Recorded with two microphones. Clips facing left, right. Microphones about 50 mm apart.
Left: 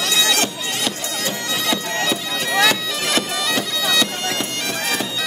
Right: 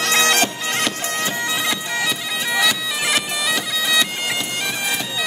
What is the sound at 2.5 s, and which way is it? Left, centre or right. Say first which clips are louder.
Bagpipes: left 2 dB; centre.